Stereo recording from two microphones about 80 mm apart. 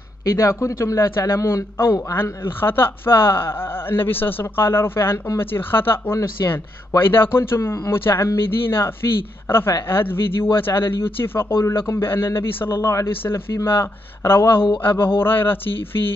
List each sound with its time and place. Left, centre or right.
0.2 s a man's voice: left
6.4 s a man's voice: left
7.0 s a man's voice: left